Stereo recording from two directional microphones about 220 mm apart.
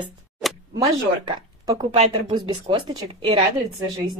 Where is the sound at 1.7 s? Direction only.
30° right (ahead or behind).